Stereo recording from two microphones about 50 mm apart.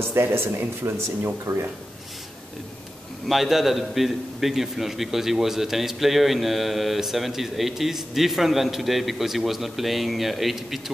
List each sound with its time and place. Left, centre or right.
0.0 s speech: right
3.3 s a man's voice: centre